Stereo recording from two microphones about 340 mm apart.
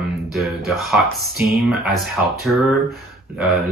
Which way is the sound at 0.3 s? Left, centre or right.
Centre.